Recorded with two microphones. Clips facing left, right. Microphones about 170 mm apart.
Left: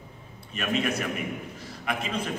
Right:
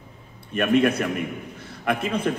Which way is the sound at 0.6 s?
55° right (ahead or behind).